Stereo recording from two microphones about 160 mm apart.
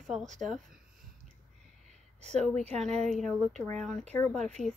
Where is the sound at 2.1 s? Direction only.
45° right (ahead or behind).